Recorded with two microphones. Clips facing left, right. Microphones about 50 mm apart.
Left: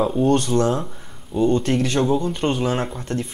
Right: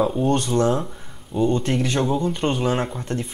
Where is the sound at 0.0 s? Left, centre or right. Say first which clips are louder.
Left 1 dB; centre.